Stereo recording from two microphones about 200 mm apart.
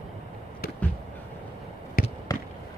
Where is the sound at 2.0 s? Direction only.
45° left (ahead or behind).